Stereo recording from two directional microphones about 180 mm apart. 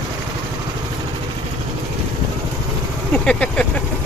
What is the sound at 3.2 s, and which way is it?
Vehicle, 5° left (ahead or behind).